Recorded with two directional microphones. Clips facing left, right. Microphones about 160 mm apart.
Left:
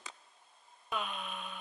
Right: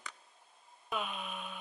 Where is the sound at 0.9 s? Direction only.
5° right (ahead or behind).